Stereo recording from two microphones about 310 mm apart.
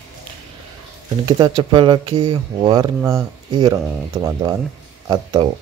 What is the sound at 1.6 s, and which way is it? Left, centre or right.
Speech, centre.